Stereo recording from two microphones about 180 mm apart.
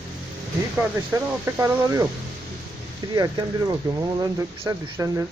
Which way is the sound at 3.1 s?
20° right (ahead or behind).